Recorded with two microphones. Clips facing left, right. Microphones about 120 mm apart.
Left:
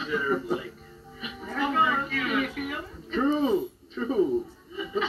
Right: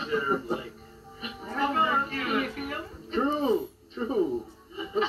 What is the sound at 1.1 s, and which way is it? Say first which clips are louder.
Music: even; 40° right (ahead or behind).